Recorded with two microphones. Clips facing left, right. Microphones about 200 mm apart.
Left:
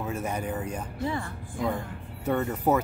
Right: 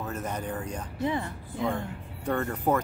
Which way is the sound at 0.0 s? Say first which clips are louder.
Left 2 dB; 10° left (ahead or behind).